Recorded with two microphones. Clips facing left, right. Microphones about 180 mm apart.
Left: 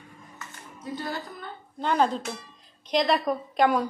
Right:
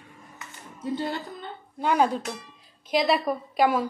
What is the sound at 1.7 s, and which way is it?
A woman's voice, 10° right (ahead or behind).